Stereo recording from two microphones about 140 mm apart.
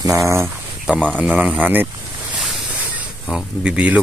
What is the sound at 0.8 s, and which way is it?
Speech, 10° right (ahead or behind).